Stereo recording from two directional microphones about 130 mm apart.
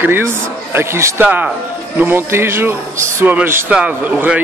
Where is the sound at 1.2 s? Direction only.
10° right (ahead or behind).